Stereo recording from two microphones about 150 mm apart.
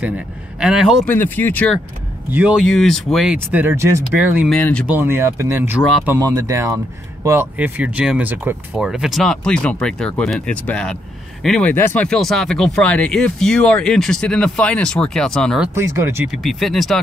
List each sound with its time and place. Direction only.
0.6 s speech: 5° right (ahead or behind)
1.0 s speech: 15° left (ahead or behind)
2.3 s speech: 10° right (ahead or behind)
2.6 s speech: 5° left (ahead or behind); by 3.9 s 15° right (ahead or behind)
4.5 s speech: 10° left (ahead or behind)
4.8 s speech: 15° right (ahead or behind); by 15.7 s centre (ahead or behind)
15.7 s speech: 20° right (ahead or behind)
16.3 s speech: centre (ahead or behind)